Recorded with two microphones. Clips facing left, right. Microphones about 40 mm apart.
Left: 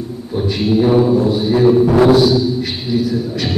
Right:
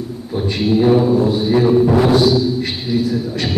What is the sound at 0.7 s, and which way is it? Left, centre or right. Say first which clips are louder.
A man's voice: even; centre.